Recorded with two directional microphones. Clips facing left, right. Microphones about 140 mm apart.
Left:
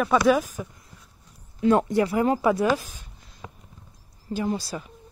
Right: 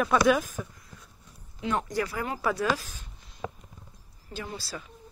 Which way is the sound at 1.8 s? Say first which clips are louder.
Left 9 dB; 25° left (ahead or behind).